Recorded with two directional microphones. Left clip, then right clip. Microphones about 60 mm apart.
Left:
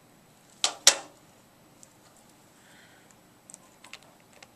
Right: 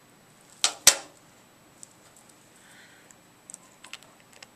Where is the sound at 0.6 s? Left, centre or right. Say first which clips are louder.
Right 2 dB; centre.